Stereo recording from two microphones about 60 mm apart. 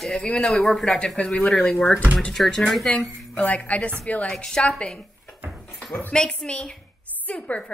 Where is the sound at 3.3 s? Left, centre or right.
Left.